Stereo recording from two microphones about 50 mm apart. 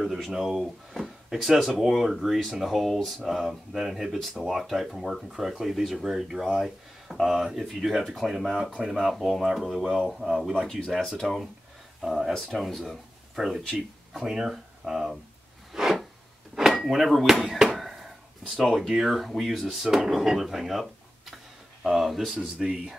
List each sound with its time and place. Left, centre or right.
0.0 s speech: centre
8.7 s speech: centre
14.2 s speech: centre
15.7 s a sound: centre
16.8 s speech: centre
18.6 s speech: centre
21.8 s speech: centre
22.4 s speech: right